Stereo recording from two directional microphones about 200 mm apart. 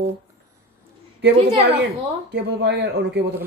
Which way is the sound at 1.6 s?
55° right (ahead or behind).